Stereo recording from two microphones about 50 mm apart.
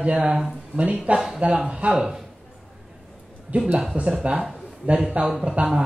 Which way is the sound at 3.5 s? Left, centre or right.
Right.